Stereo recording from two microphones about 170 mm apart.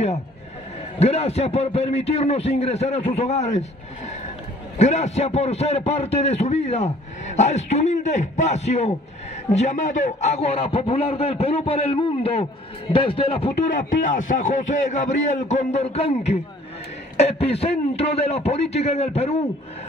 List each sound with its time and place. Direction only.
0.9 s a man's voice: 35° left (ahead or behind)
13.7 s a man's voice: 50° left (ahead or behind)